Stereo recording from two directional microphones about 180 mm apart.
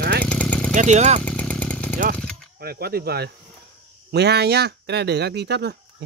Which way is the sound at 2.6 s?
60° right (ahead or behind).